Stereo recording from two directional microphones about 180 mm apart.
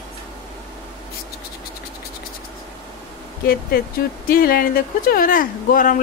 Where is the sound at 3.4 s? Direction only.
55° left (ahead or behind).